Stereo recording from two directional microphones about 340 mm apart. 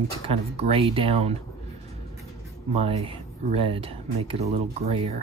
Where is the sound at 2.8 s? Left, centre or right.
Centre.